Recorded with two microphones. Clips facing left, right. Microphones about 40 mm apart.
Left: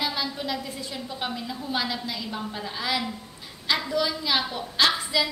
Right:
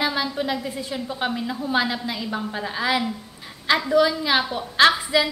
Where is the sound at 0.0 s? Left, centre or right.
Right.